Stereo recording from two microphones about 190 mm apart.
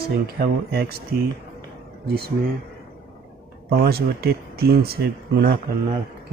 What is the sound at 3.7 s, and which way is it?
Speech, 55° right (ahead or behind).